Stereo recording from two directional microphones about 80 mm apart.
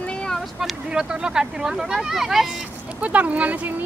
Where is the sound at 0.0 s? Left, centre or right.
Centre.